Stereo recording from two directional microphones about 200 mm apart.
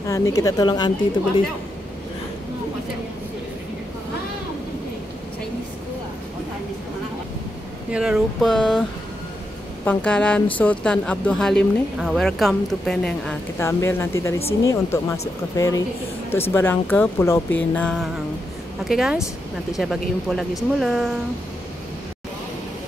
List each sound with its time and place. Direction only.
0.0 s speech: 15° left (ahead or behind)
7.9 s speech: 5° right (ahead or behind)
9.8 s speech: 5° left (ahead or behind)